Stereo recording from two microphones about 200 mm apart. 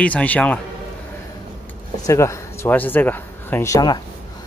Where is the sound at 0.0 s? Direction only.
5° left (ahead or behind).